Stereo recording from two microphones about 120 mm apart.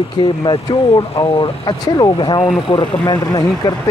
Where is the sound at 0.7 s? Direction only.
55° left (ahead or behind).